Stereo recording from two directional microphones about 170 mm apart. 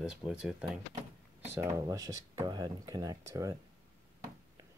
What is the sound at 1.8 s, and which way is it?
Speech, 20° right (ahead or behind).